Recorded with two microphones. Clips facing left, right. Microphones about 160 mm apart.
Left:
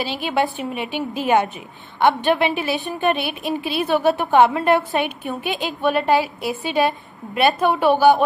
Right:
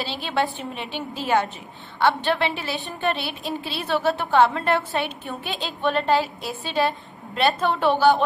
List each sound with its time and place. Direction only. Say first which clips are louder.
0.0 s a woman's voice: left 4 dB; 15° left (ahead or behind)